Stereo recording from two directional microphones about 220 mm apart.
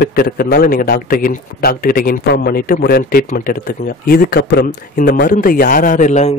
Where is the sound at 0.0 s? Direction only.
45° left (ahead or behind).